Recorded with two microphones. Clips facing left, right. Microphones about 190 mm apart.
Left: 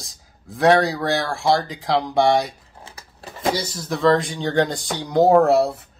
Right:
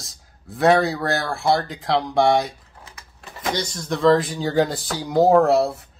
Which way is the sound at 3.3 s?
30° left (ahead or behind).